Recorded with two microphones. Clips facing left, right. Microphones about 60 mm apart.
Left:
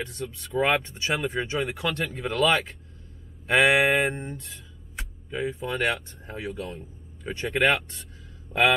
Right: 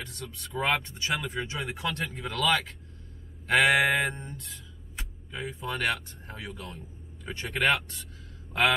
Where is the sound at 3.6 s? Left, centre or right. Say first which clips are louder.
Left 3 dB; left.